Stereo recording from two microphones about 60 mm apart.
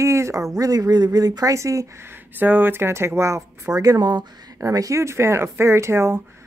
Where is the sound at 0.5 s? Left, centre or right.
Right.